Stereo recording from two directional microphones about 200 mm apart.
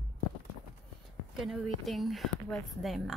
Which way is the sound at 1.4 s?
Centre (ahead or behind).